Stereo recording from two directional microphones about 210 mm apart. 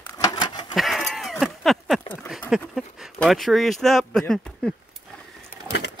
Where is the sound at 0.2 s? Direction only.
20° left (ahead or behind).